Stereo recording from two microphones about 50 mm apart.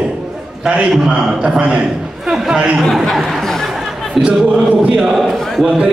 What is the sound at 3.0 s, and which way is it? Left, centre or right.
Speech, centre.